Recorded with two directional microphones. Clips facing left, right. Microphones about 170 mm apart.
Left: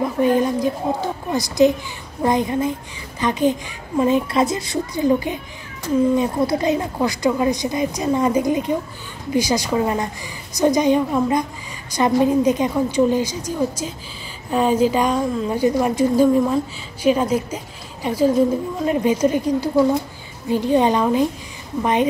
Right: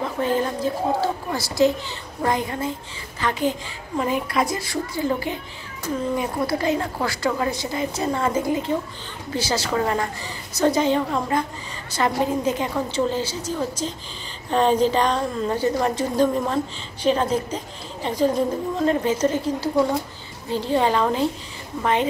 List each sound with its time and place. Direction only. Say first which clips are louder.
0.0 s a woman's voice: left 5 dB; 15° left (ahead or behind)